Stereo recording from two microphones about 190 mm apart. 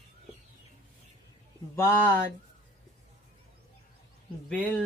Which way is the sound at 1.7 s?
10° left (ahead or behind).